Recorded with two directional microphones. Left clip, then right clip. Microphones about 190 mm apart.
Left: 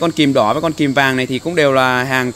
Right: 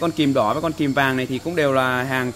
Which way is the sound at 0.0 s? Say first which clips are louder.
Left 6 dB; 40° left (ahead or behind).